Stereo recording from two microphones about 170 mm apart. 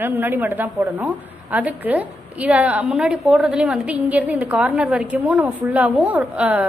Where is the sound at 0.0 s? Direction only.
10° right (ahead or behind).